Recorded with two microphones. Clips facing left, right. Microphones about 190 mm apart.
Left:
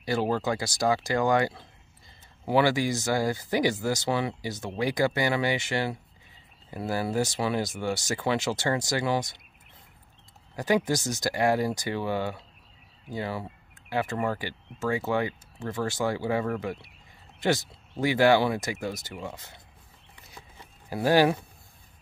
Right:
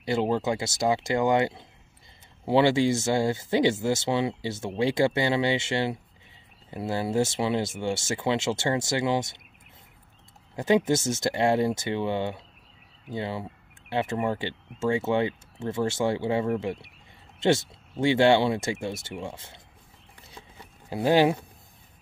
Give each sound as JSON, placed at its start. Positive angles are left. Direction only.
{"t": 0.0, "sound": "speech", "side_deg": -20}
{"t": 10.5, "sound": "speech", "side_deg": -25}
{"t": 20.9, "sound": "speech", "side_deg": -20}